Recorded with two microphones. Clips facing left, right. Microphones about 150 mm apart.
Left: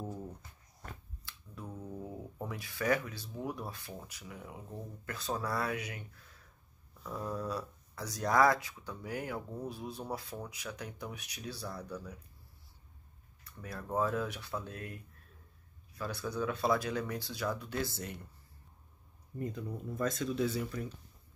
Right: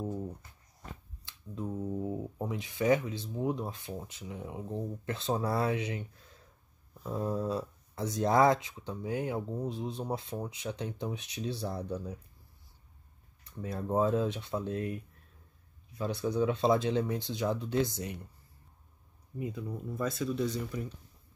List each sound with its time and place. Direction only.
1.2 s speech: 20° right (ahead or behind)
13.6 s speech: 25° right (ahead or behind)
16.0 s speech: 20° right (ahead or behind)
19.3 s speech: 5° right (ahead or behind)